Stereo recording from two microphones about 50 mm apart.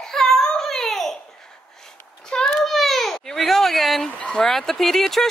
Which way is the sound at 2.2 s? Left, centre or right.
Centre.